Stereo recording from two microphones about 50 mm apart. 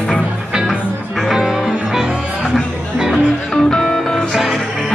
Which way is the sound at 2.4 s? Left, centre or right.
Centre.